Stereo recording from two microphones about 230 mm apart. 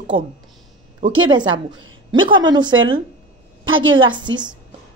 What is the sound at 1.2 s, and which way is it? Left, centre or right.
A woman's voice, centre.